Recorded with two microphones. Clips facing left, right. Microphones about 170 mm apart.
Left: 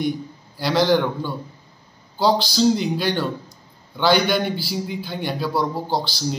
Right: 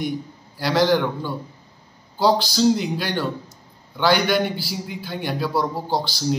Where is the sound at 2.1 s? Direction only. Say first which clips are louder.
Even; 10° right (ahead or behind).